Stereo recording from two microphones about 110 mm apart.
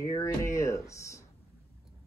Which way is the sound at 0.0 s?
30° left (ahead or behind).